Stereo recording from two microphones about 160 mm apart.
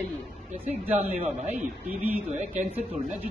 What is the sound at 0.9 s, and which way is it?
Speech, 45° right (ahead or behind).